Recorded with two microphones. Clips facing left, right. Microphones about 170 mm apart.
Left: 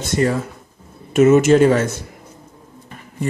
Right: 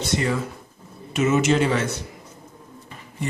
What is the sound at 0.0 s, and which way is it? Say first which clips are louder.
A man's voice: left 5 dB; 45° left (ahead or behind).